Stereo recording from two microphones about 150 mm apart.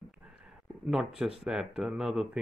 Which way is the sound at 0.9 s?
5° right (ahead or behind).